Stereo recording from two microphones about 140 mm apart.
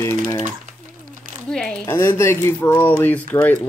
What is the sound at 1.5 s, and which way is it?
Zipper, 5° left (ahead or behind).